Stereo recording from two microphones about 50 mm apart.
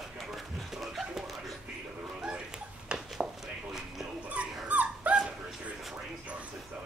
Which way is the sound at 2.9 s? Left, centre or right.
Centre.